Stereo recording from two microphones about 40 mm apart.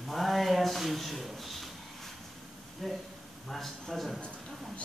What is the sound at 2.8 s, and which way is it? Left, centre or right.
A man's voice, centre.